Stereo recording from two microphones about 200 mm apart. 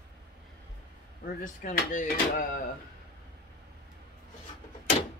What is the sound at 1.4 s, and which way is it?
Speech, 40° left (ahead or behind).